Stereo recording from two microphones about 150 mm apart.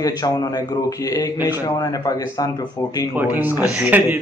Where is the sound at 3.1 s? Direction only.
10° right (ahead or behind).